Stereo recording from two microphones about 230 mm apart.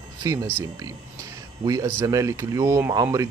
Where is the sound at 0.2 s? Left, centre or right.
Centre.